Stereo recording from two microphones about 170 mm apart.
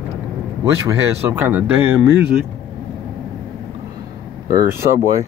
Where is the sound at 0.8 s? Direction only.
10° right (ahead or behind).